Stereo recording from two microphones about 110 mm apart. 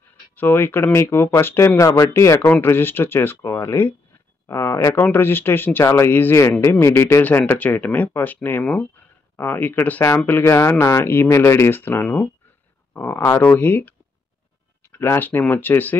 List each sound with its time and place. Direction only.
0.4 s speech: 20° left (ahead or behind)